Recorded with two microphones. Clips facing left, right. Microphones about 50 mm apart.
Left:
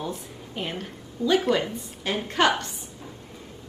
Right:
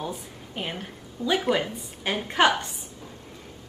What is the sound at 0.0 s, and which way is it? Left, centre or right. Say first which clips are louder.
A woman's voice: left 1 dB; centre.